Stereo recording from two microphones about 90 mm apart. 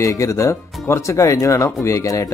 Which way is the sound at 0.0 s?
35° left (ahead or behind).